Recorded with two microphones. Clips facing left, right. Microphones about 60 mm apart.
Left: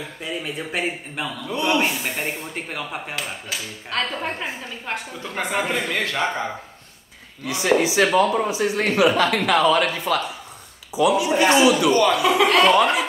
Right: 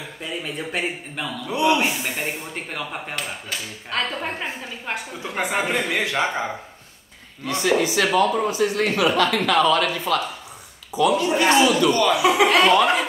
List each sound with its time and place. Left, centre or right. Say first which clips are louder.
0.2 s speech: even; centre
7.4 s a man's voice: left 1 dB; centre
8.5 s a man's voice: right 1 dB; centre
12.1 s speech: even; centre